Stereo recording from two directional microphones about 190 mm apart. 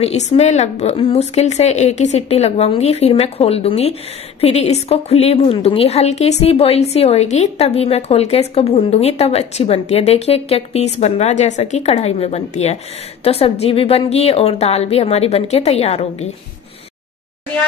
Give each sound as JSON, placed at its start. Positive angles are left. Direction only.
{"t": 0.0, "sound": "a woman's voice", "side_deg": 35}